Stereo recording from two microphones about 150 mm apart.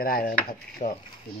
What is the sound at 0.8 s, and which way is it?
Speech, 60° left (ahead or behind).